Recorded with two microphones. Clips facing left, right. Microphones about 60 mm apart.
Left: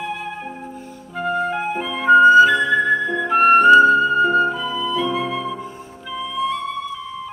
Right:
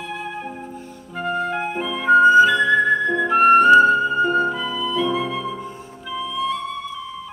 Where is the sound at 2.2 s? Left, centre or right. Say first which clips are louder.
Left 2 dB; left.